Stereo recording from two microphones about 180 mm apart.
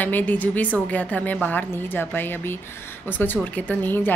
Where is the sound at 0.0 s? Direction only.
10° left (ahead or behind).